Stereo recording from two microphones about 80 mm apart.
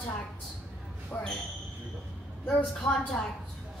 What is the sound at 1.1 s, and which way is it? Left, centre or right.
Speech, left.